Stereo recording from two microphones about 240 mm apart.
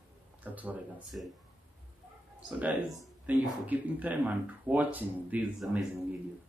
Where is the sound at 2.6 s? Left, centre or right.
Centre.